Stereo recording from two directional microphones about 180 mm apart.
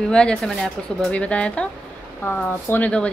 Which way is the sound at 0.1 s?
5° left (ahead or behind).